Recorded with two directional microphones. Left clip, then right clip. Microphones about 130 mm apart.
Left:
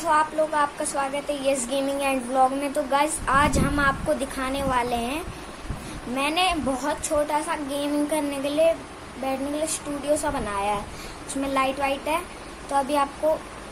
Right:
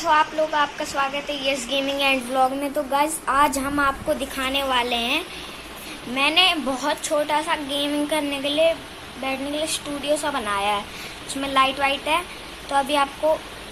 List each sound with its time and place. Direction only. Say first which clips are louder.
0.0 s a woman's voice: right 2 dB; centre (ahead or behind)
1.7 s child singing: right 2 dB; 15° left (ahead or behind)
2.0 s a woman's voice: right 2 dB; centre (ahead or behind)
2.6 s a woman's voice: right 1 dB; 10° right (ahead or behind)